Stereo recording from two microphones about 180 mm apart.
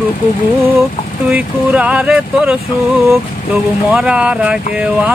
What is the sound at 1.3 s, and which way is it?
Speech, 5° right (ahead or behind).